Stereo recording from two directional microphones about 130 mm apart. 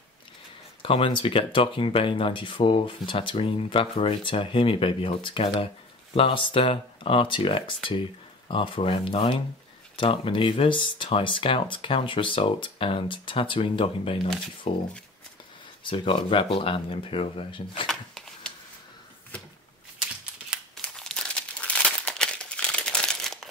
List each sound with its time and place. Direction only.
0.8 s speech: 45° left (ahead or behind)
15.8 s speech: 40° left (ahead or behind)
17.8 s shuffling cards: 5° left (ahead or behind)
20.0 s a sound: 5° right (ahead or behind)
20.8 s crumpling: 5° left (ahead or behind)